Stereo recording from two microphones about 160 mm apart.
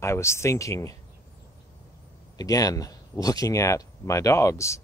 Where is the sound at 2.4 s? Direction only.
20° left (ahead or behind).